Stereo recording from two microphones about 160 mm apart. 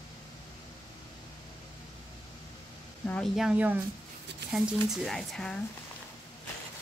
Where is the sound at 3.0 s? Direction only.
5° left (ahead or behind).